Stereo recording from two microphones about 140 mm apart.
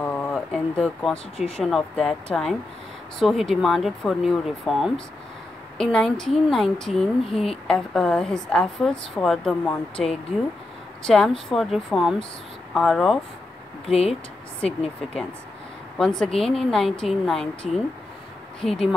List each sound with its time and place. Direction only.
0.0 s a sound: 10° left (ahead or behind)
1.4 s a woman's voice: centre (ahead or behind)
11.1 s a woman's voice: 5° left (ahead or behind)
16.0 s a woman's voice: 5° left (ahead or behind)
16.3 s a woman's voice: 45° left (ahead or behind)
16.7 s a woman's voice: 5° left (ahead or behind)